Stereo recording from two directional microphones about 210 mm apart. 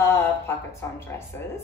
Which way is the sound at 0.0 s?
10° left (ahead or behind).